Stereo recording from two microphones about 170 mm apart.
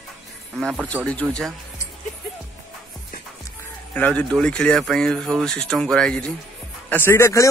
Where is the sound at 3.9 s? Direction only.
5° left (ahead or behind).